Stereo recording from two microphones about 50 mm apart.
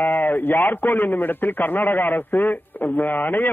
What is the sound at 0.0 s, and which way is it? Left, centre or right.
A man's voice, left.